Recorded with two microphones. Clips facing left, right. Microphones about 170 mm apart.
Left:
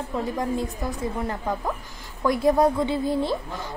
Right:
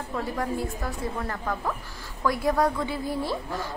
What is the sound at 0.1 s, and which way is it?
A woman's voice, 20° left (ahead or behind).